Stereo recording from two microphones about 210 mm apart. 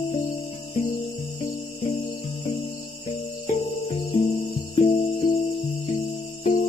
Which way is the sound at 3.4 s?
30° left (ahead or behind).